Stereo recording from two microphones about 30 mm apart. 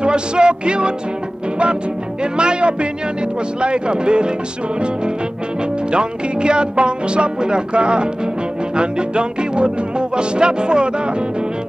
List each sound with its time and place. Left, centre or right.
0.0 s music: right
2.3 s music: right
5.9 s music: right